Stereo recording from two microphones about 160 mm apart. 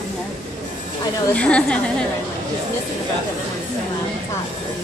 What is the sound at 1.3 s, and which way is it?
Speech, 5° left (ahead or behind).